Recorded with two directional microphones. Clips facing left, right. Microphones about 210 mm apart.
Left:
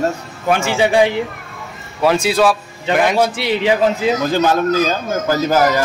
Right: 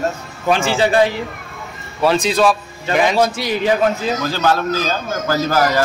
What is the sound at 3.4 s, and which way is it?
A man's voice, 20° left (ahead or behind).